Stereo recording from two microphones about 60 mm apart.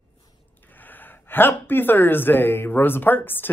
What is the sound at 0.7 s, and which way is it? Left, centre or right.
Speech, left.